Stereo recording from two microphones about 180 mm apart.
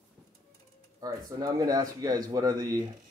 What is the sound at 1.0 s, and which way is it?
Speech, 20° right (ahead or behind).